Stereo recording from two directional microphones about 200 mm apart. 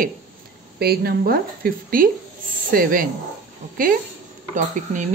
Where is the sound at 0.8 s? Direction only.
50° right (ahead or behind).